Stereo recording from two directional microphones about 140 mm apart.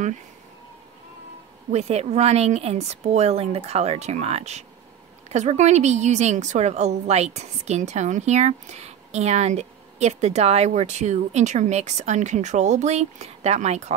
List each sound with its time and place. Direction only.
1.7 s a woman's voice: 50° right (ahead or behind)